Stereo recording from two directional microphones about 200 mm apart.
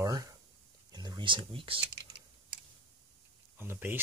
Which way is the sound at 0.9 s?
20° right (ahead or behind).